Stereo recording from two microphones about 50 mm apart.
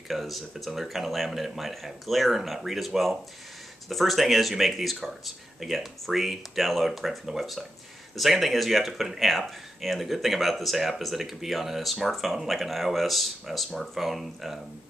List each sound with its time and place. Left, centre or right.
0.1 s speech: centre